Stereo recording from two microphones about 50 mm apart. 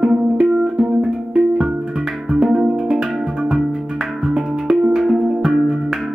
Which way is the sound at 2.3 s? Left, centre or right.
Centre.